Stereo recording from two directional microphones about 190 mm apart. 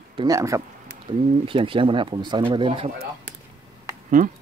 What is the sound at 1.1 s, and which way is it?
A man's voice, 30° right (ahead or behind).